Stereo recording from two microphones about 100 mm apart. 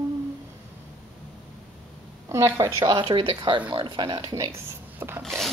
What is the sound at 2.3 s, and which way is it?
Speech, 30° right (ahead or behind).